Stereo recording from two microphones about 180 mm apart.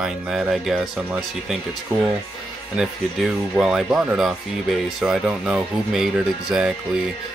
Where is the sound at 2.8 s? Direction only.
Centre (ahead or behind).